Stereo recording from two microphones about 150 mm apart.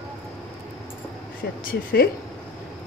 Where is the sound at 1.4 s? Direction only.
90° left.